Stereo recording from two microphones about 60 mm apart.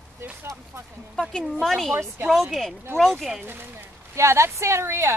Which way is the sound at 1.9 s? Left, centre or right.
Right.